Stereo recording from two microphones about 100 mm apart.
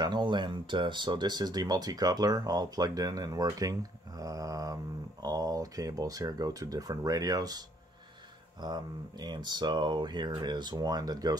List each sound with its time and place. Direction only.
0.0 s speech: 50° right (ahead or behind)
4.2 s a sound: 35° right (ahead or behind)
5.2 s speech: 40° right (ahead or behind)